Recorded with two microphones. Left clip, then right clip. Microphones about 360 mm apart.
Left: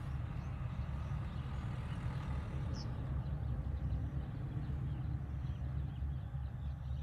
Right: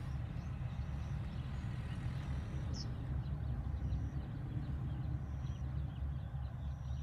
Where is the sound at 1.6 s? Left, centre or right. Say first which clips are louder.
Left 1 dB; centre.